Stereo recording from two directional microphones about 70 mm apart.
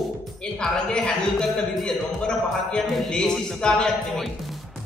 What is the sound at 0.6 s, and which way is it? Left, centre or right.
A man's voice, centre.